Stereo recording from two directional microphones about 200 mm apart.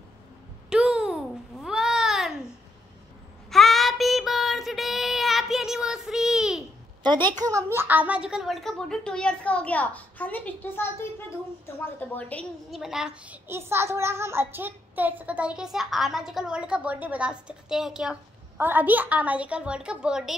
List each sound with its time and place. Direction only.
0.7 s babbling: 5° right (ahead or behind)
3.4 s child singing: centre (ahead or behind)
7.0 s a sound: 20° right (ahead or behind)
7.3 s a woman's voice: 15° right (ahead or behind)